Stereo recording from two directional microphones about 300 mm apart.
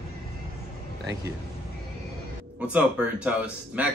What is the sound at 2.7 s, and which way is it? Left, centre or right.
Speech, centre.